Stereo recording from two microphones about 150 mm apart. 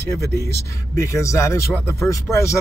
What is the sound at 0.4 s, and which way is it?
Speech, 20° left (ahead or behind).